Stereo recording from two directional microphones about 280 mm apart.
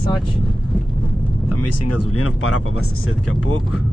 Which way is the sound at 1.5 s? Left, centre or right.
Left.